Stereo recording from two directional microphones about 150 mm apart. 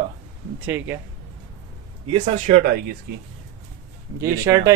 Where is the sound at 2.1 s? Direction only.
45° right (ahead or behind).